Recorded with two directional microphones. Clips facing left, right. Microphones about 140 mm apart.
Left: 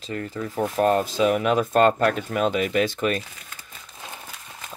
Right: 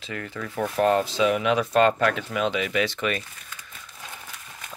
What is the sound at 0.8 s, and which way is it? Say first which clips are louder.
Speech: left 1 dB; 45° left (ahead or behind).